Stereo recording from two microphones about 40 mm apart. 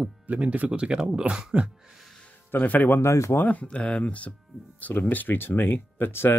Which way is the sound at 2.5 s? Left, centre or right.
Left.